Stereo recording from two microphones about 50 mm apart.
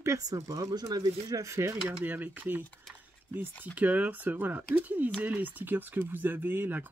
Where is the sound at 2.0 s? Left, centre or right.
Right.